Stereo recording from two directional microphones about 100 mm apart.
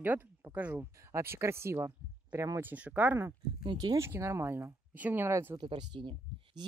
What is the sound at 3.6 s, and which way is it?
Speech, 45° right (ahead or behind).